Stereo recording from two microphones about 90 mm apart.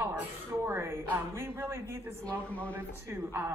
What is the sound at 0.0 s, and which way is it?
A woman's voice, 30° right (ahead or behind).